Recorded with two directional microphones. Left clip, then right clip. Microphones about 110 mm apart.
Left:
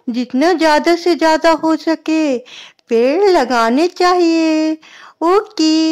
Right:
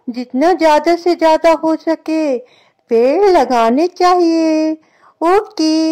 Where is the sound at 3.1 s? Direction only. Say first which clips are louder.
Right 2 dB; 10° left (ahead or behind).